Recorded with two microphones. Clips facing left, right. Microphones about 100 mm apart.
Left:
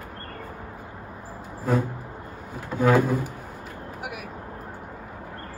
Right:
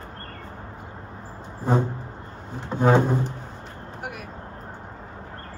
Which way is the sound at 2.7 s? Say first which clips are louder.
Right 1 dB; 25° right (ahead or behind).